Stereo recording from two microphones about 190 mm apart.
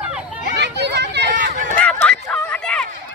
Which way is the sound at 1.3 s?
45° right (ahead or behind).